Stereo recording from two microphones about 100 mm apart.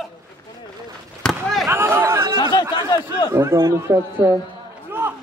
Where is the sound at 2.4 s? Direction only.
45° left (ahead or behind).